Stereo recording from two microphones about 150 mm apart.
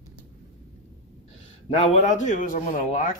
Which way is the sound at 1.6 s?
55° left (ahead or behind).